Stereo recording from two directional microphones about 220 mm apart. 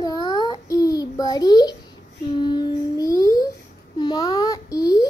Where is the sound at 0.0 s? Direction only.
15° left (ahead or behind).